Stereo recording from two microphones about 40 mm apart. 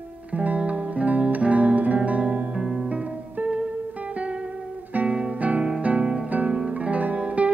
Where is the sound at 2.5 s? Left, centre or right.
Right.